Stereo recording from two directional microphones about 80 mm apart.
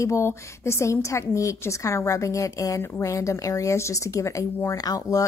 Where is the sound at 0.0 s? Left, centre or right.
Left.